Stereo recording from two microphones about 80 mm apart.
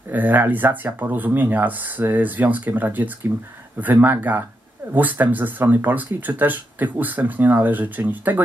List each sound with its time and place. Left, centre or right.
0.1 s speech: right